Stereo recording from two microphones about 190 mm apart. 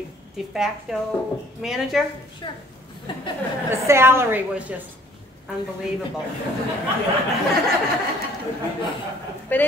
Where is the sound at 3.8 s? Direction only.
15° right (ahead or behind).